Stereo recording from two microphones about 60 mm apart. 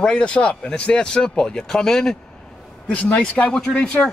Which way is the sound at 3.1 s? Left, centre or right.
Left.